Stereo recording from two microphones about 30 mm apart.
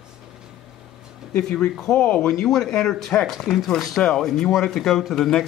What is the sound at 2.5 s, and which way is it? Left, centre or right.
Speech, centre.